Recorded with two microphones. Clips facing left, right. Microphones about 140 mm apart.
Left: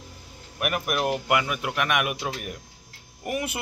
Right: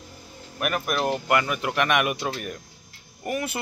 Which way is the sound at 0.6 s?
15° left (ahead or behind).